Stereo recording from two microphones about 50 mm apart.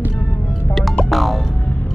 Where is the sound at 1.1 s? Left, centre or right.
Centre.